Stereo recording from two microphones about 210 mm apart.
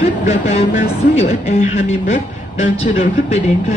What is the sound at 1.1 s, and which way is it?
A woman's voice, 30° left (ahead or behind).